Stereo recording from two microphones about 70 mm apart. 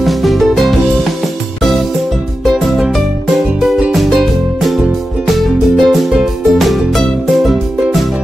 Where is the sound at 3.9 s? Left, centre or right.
Centre.